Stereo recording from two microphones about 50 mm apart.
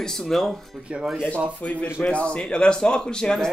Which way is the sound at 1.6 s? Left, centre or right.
Left.